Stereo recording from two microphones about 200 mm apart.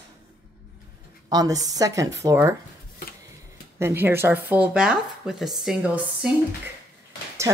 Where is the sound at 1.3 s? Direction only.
20° right (ahead or behind).